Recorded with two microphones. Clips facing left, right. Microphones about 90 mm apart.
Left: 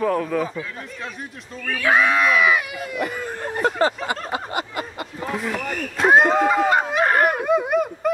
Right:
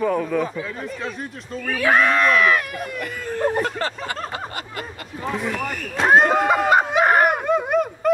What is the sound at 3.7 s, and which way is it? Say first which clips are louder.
Speech: left 5 dB; 15° left (ahead or behind).